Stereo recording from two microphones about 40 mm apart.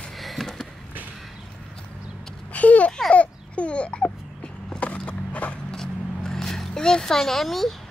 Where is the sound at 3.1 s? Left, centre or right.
Left.